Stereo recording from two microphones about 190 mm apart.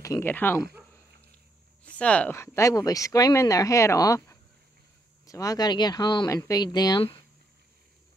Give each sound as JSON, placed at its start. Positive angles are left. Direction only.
{"t": 0.0, "sound": "speech", "side_deg": 15}
{"t": 1.9, "sound": "speech", "side_deg": 5}